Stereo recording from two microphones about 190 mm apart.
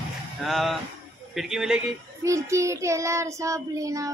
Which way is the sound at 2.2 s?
15° right (ahead or behind).